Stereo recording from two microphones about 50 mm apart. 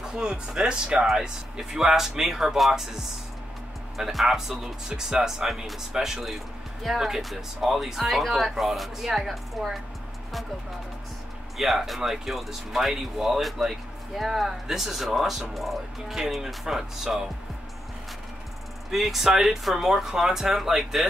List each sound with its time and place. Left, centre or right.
0.0 s speech: centre
11.5 s speech: centre
18.9 s speech: centre